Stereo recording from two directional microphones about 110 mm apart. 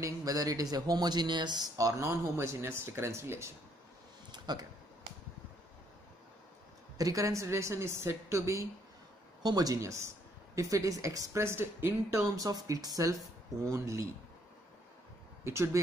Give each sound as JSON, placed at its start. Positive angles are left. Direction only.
{"t": 0.0, "sound": "speech", "side_deg": -35}
{"t": 4.3, "sound": "a sound", "side_deg": -40}
{"t": 7.0, "sound": "speech", "side_deg": -30}
{"t": 12.4, "sound": "speech", "side_deg": -35}
{"t": 15.4, "sound": "speech", "side_deg": -25}